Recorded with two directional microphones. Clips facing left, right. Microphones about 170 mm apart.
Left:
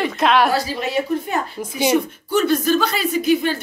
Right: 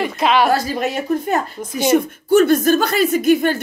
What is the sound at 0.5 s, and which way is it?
Speech, 50° right (ahead or behind).